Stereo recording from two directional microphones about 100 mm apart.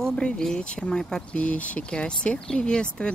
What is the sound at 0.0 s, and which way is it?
Speech, 10° left (ahead or behind).